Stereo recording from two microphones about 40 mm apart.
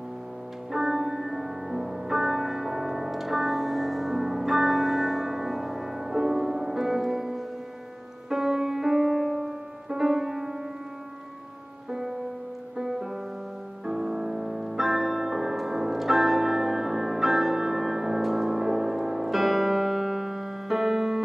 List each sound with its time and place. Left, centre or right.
0.7 s music: centre
11.9 s music: centre